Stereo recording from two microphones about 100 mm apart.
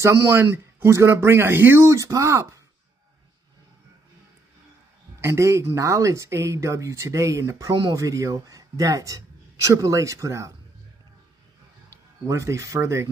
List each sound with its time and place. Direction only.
0.0 s speech: 30° right (ahead or behind)
5.2 s speech: 30° right (ahead or behind)
12.3 s speech: 30° right (ahead or behind)